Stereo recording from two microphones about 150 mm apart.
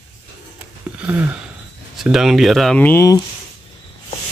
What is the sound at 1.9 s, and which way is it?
Speech, 5° right (ahead or behind).